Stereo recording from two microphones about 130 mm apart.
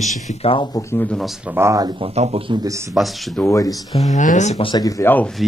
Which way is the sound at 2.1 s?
55° right (ahead or behind).